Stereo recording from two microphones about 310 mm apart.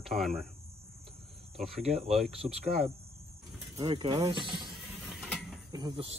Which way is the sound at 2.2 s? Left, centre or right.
Centre.